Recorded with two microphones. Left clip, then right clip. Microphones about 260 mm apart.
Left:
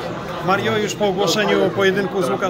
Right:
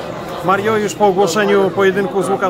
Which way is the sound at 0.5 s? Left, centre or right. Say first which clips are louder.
Right 4 dB; centre.